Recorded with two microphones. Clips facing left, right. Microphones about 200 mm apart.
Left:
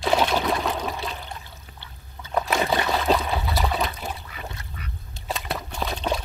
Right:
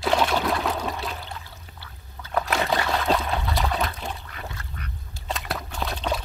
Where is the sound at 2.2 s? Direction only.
20° left (ahead or behind).